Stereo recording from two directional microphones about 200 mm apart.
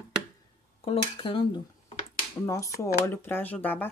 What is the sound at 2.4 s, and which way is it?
Speech, 15° left (ahead or behind).